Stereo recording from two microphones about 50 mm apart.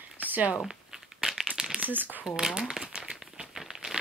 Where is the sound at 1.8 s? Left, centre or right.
Right.